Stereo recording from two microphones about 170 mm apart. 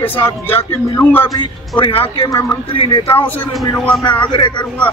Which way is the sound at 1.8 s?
35° left (ahead or behind).